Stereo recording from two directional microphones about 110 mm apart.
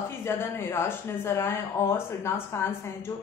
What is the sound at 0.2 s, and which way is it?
Speech, 20° left (ahead or behind).